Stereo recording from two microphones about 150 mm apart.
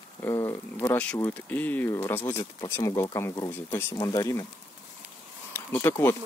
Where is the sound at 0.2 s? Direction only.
20° left (ahead or behind).